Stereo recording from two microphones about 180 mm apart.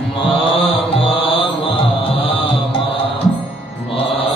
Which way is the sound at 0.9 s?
35° left (ahead or behind).